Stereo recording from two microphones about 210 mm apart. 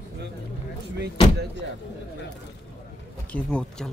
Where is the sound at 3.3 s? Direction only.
5° left (ahead or behind).